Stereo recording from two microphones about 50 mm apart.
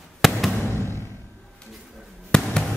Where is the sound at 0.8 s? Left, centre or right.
Left.